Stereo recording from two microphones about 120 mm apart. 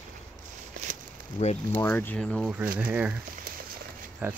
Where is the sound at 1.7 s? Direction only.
15° left (ahead or behind).